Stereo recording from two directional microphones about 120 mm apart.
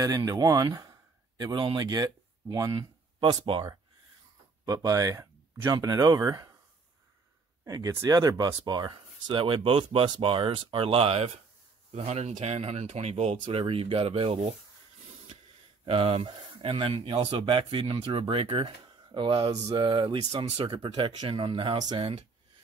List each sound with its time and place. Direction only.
0.0 s speech: 30° right (ahead or behind)
4.6 s speech: 30° right (ahead or behind)
7.6 s speech: 30° right (ahead or behind); by 14.4 s 50° right (ahead or behind)
15.8 s speech: 50° right (ahead or behind)
21.7 s speech: 35° right (ahead or behind)